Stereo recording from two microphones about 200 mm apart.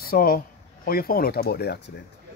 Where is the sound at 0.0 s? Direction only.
45° left (ahead or behind).